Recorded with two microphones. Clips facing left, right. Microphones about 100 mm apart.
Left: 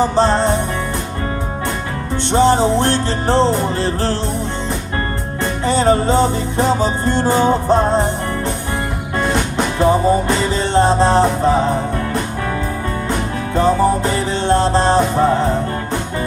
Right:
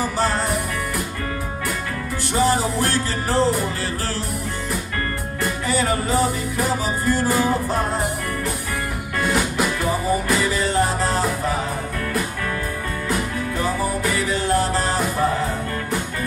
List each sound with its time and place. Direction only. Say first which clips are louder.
0.0 s music: left 8 dB; 25° left (ahead or behind)
2.3 s music: left 7 dB; 25° left (ahead or behind)
5.4 s music: left 6 dB; 25° left (ahead or behind)
9.8 s music: left 8 dB; 25° left (ahead or behind)